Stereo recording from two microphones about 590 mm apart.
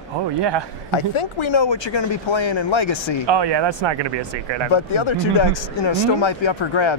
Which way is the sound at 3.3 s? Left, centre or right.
Right.